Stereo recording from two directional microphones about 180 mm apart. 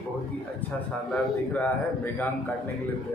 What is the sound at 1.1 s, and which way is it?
A man's voice, 10° left (ahead or behind).